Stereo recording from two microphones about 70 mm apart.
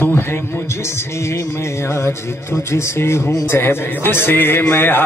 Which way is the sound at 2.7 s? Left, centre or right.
Left.